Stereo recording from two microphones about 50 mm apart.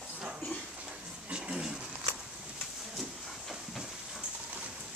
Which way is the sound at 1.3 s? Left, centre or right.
Centre.